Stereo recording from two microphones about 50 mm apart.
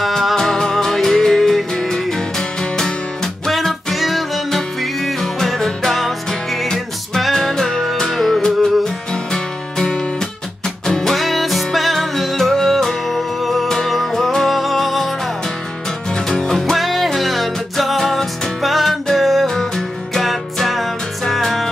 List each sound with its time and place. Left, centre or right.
0.0 s music: centre
16.3 s music: centre